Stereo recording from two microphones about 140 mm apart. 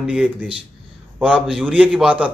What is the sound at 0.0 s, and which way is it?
A man's voice, 10° right (ahead or behind).